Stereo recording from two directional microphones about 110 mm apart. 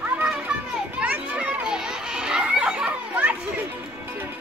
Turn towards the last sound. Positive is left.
turn(degrees=-10)  # may be behind; listen again after turning